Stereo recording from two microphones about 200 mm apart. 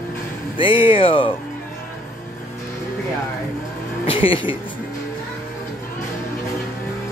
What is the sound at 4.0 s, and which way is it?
Speech, 25° left (ahead or behind).